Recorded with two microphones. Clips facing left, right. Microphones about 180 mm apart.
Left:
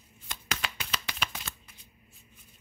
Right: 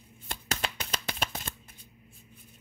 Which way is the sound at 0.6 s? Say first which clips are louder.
Right 2 dB; 45° right (ahead or behind).